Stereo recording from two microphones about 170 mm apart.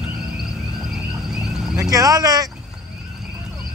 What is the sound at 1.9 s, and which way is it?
Speech, 20° right (ahead or behind).